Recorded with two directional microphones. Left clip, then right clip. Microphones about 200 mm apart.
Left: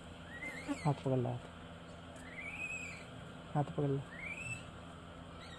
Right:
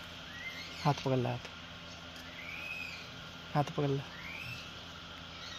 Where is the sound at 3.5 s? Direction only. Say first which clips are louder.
Right 4 dB; 25° right (ahead or behind).